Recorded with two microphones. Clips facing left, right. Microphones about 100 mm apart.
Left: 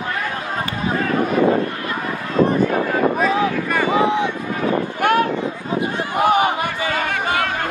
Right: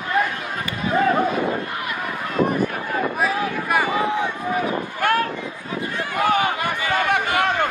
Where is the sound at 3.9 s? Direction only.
20° left (ahead or behind).